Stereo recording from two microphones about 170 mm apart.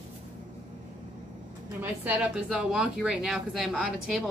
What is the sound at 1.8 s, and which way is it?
Speech, 10° right (ahead or behind).